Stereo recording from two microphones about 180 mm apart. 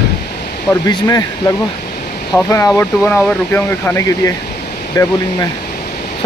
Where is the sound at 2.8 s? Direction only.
10° left (ahead or behind).